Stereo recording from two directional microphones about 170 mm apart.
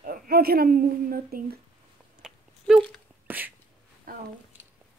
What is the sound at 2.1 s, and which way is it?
Chewing, 5° right (ahead or behind).